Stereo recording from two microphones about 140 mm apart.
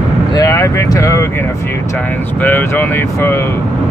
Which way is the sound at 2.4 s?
15° left (ahead or behind).